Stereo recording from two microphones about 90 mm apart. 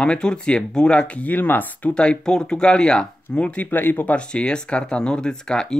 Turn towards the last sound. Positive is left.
turn(degrees=10)  # may be behind; listen again after turning